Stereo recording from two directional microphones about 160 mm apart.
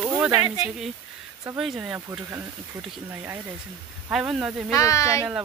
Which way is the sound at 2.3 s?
15° right (ahead or behind).